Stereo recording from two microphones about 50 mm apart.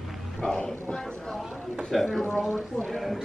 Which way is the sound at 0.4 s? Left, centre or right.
Centre.